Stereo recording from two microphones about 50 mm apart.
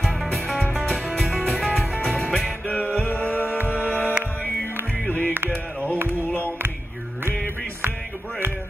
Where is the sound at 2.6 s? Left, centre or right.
Left.